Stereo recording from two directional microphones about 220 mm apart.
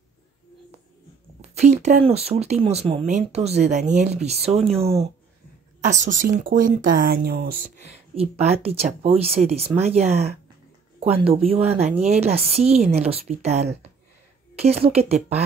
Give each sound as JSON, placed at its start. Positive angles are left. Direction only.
{"t": 1.5, "sound": "speech", "side_deg": -30}
{"t": 8.1, "sound": "speech", "side_deg": -25}